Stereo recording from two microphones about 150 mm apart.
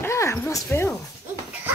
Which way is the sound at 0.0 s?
20° left (ahead or behind).